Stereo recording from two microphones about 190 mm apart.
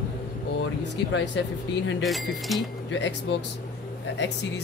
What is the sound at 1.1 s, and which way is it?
Speech, 70° left (ahead or behind).